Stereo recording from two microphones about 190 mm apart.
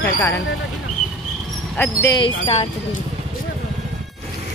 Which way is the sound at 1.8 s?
15° left (ahead or behind).